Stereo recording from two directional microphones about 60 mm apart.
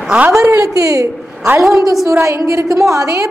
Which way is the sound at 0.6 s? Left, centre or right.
Right.